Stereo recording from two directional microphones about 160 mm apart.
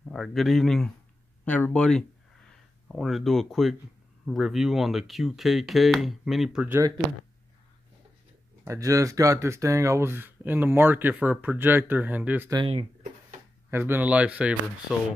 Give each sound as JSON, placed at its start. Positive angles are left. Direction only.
{"t": 0.0, "sound": "speech", "side_deg": 0}
{"t": 8.6, "sound": "speech", "side_deg": -20}
{"t": 12.4, "sound": "speech", "side_deg": -30}
{"t": 13.7, "sound": "speech", "side_deg": -15}